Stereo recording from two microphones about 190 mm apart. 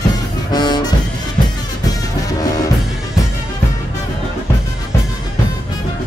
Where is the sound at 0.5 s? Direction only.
20° left (ahead or behind).